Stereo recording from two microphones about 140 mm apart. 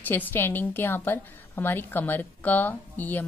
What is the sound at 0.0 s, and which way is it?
A woman's voice, 15° left (ahead or behind).